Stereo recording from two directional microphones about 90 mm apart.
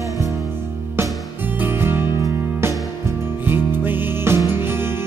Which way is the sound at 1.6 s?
25° right (ahead or behind).